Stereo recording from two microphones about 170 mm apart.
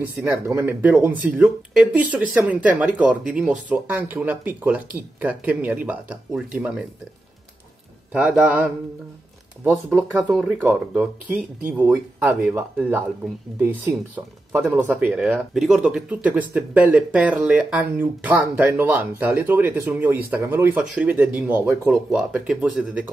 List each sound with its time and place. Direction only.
0.0 s speech: 15° right (ahead or behind)
8.1 s speech: 5° right (ahead or behind)
9.7 s speech: 10° right (ahead or behind)